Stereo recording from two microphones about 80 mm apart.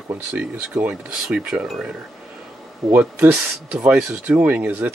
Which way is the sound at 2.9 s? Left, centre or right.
Right.